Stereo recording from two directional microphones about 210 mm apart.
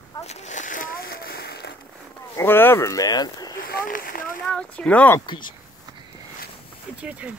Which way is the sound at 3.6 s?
45° left (ahead or behind).